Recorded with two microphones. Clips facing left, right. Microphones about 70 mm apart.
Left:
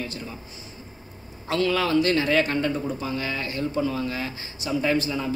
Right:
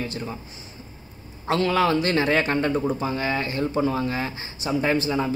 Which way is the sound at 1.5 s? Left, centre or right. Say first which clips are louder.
Right 2 dB; right.